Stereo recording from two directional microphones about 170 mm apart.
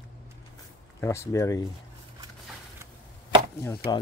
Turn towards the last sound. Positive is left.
turn(degrees=15)  # may be behind; listen again after turning